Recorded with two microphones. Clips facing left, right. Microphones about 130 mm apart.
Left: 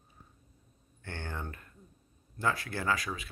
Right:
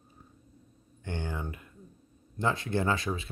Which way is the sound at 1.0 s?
15° right (ahead or behind).